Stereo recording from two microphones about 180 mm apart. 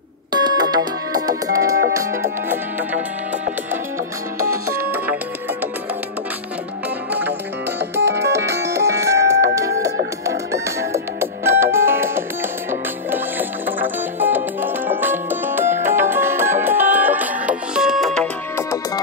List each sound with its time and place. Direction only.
0.3 s music: 25° right (ahead or behind)
4.4 s music: 15° right (ahead or behind)
7.1 s music: 10° right (ahead or behind); by 18.8 s 10° left (ahead or behind)